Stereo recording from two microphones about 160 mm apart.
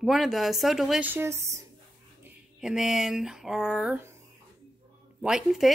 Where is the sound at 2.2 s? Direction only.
5° right (ahead or behind).